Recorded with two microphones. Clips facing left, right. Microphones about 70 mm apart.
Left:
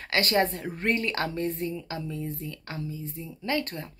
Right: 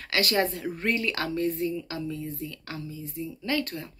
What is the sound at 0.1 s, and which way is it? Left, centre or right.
Speech, left.